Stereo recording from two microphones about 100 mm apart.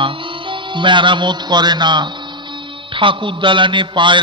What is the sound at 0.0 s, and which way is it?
A man's voice, 55° right (ahead or behind).